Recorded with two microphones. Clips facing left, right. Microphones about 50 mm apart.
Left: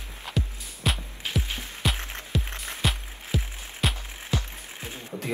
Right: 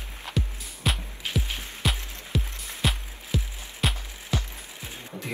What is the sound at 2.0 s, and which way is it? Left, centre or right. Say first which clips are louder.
Music: left 4 dB; left.